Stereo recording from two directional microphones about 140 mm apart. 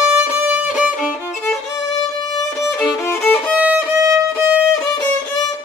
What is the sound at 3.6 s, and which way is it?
Violin, 10° right (ahead or behind).